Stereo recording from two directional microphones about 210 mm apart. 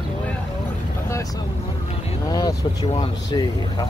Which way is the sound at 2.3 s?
20° left (ahead or behind).